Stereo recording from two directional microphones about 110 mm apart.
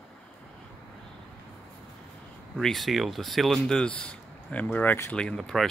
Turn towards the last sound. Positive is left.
turn(degrees=5)  # may be behind; listen again after turning